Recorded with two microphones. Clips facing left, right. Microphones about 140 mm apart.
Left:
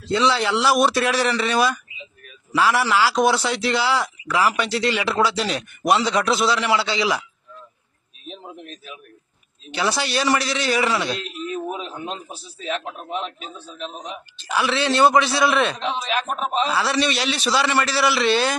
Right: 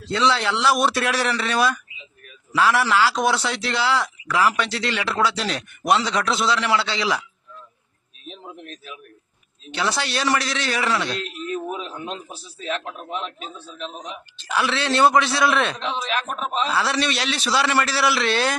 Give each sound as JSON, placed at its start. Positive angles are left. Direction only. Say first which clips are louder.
{"t": 0.1, "sound": "speech", "louder": "left 2 dB", "side_deg": 5}
{"t": 9.7, "sound": "speech", "louder": "left 2 dB", "side_deg": 5}
{"t": 11.7, "sound": "a man's voice", "louder": "left 1 dB", "side_deg": 20}